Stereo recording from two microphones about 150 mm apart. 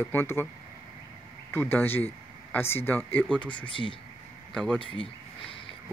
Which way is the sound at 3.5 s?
35° left (ahead or behind).